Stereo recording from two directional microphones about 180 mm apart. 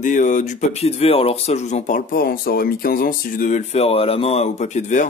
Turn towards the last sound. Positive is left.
turn(degrees=40)  # may be behind; listen again after turning